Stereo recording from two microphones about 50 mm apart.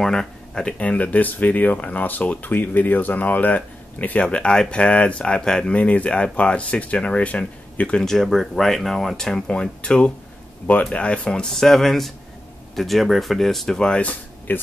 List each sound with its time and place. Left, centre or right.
0.0 s speech: centre
0.7 s speech: left
8.0 s speech: centre
11.5 s speech: centre
14.5 s speech: left